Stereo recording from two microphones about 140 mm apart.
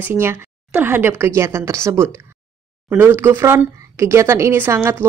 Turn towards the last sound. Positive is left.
turn(degrees=-15)  # may be behind; listen again after turning